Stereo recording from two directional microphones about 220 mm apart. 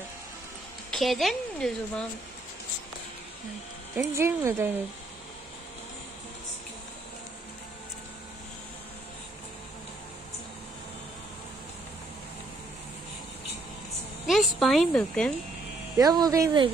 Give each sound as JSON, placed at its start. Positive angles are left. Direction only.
{"t": 0.9, "sound": "a woman's voice", "side_deg": 0}
{"t": 3.9, "sound": "speech", "side_deg": -10}
{"t": 14.2, "sound": "a woman's voice", "side_deg": 0}
{"t": 16.0, "sound": "speech", "side_deg": -15}